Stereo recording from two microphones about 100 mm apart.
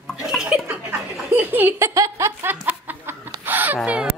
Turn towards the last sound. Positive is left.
turn(degrees=-10)  # may be behind; listen again after turning